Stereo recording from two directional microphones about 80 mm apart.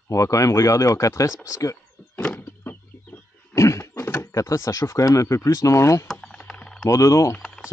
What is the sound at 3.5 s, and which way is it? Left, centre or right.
Speech, left.